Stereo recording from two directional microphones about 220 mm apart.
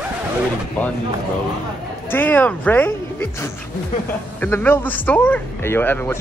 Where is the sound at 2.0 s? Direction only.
10° left (ahead or behind).